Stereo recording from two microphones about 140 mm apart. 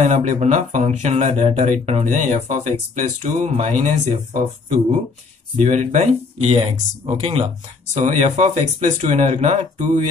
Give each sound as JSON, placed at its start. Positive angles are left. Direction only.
{"t": 0.0, "sound": "speech", "side_deg": -55}
{"t": 6.5, "sound": "speech", "side_deg": -45}
{"t": 7.9, "sound": "speech", "side_deg": -60}